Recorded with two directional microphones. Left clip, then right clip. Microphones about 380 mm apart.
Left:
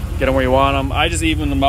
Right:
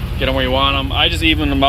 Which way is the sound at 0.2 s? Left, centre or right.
Centre.